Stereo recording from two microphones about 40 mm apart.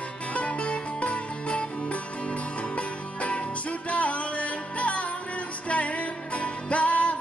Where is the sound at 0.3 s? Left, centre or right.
Left.